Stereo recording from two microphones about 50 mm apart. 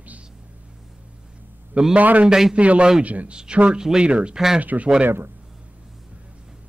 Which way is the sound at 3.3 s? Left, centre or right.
Centre.